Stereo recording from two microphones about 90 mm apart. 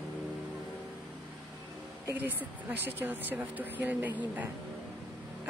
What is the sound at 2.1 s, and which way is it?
A woman's voice, 20° right (ahead or behind).